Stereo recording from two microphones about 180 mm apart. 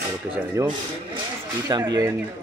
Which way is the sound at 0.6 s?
20° right (ahead or behind).